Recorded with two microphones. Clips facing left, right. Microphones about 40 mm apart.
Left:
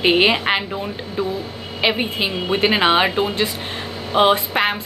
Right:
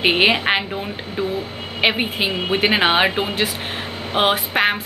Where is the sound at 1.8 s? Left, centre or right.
Centre.